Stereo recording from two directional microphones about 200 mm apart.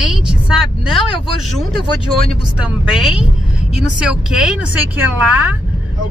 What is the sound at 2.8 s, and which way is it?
Speech, 5° right (ahead or behind).